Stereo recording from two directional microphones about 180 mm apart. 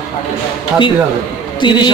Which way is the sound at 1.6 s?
25° left (ahead or behind).